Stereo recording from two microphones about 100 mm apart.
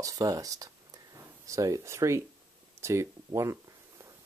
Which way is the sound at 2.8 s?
30° right (ahead or behind).